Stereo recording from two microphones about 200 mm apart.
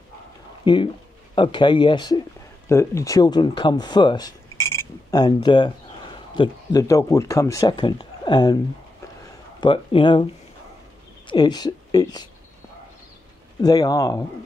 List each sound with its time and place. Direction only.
0.7 s speech: 20° left (ahead or behind)
9.6 s speech: 25° left (ahead or behind)
11.2 s speech: 20° left (ahead or behind)
13.6 s speech: 20° left (ahead or behind)